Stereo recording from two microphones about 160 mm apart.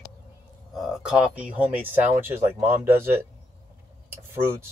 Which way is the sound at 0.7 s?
Centre (ahead or behind).